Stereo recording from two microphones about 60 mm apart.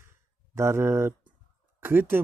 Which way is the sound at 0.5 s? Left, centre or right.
Right.